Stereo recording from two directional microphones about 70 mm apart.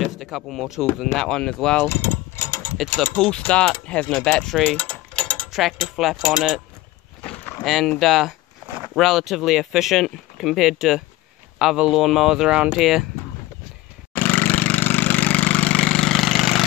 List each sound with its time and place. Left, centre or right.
0.0 s speech: centre
1.9 s mechanisms: left
3.0 s speech: centre
4.7 s mechanisms: centre
5.5 s speech: centre
7.6 s speech: centre
11.5 s speech: centre
14.1 s a sound: left; by 16.6 s centre